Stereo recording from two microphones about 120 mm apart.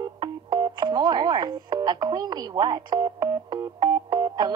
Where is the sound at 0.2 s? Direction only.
40° right (ahead or behind).